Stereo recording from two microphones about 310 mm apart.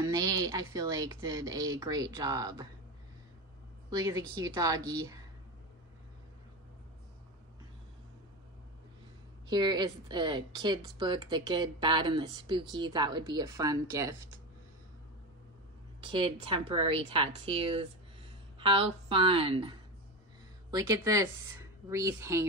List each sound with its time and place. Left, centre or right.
0.1 s speech: centre
4.0 s speech: centre
9.5 s speech: centre
16.0 s speech: centre